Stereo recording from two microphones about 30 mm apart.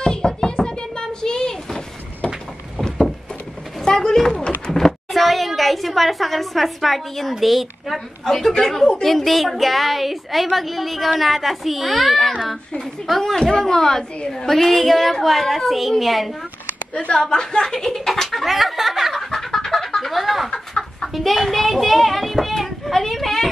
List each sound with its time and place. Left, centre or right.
0.0 s knock: left
3.8 s a sound: left
5.1 s a sound: centre
5.6 s a woman's voice: centre
8.3 s a woman's voice: centre
16.9 s a woman's voice: left
17.2 s a woman's voice: left
18.4 s a sound: centre
19.3 s chicken: centre
20.4 s chicken: left
21.1 s a woman's voice: centre